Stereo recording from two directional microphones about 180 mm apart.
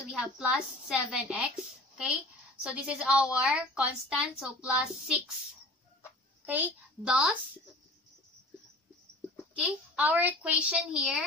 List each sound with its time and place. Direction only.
0.2 s a woman's voice: 5° right (ahead or behind)
6.4 s a child's voice: 10° right (ahead or behind)
9.6 s a woman's voice: 10° right (ahead or behind)